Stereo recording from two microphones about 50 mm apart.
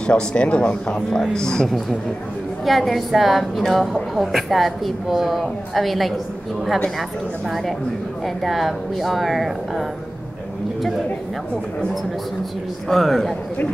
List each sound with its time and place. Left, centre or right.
0.0 s a woman's voice: centre
2.6 s a woman's voice: centre
12.8 s a woman's voice: centre